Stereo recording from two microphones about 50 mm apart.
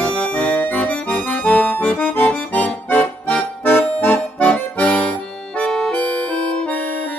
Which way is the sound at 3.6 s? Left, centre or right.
Left.